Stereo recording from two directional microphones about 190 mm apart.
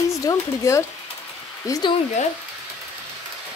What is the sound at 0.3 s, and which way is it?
Speech, 15° left (ahead or behind).